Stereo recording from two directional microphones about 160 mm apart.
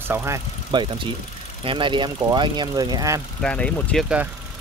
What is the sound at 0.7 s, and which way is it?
Speech, 30° right (ahead or behind).